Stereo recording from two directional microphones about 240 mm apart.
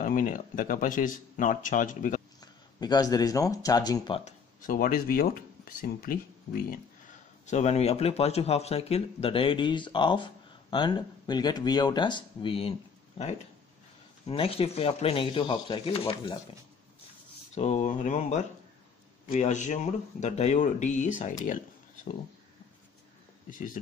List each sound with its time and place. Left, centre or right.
0.0 s speech: left
2.4 s speech: centre
4.6 s speech: left
14.2 s speech: left
17.6 s speech: left
23.5 s speech: left